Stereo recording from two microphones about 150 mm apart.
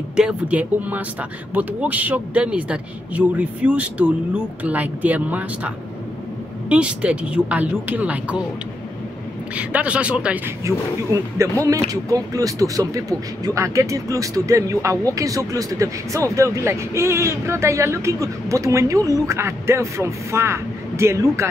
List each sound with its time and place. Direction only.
0.1 s speech: 5° right (ahead or behind)
6.7 s speech: 10° right (ahead or behind)
9.6 s speech: 10° right (ahead or behind)
10.6 s speech: 20° right (ahead or behind)